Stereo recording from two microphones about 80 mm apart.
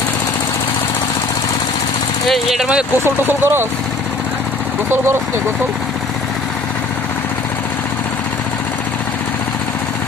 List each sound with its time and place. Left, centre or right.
2.2 s speech: centre
3.0 s speech: right